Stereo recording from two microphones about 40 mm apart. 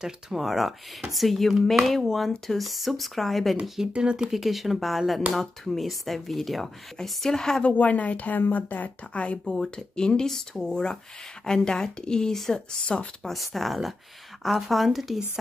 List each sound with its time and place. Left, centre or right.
0.0 s speech: centre
3.8 s speech: right
4.3 s speech: centre
7.0 s speech: centre
7.6 s speech: left
8.4 s speech: left
9.1 s speech: left
9.4 s speech: centre
9.9 s speech: left
13.2 s speech: centre